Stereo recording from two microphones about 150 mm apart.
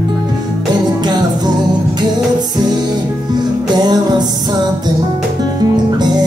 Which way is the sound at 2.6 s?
30° right (ahead or behind).